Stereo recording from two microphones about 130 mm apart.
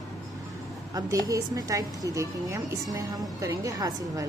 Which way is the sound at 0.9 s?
25° right (ahead or behind).